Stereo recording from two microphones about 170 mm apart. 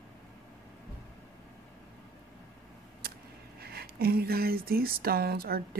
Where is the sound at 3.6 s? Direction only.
65° right (ahead or behind).